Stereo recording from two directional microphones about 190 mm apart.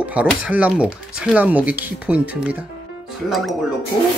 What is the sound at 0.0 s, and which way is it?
Speech, 5° right (ahead or behind).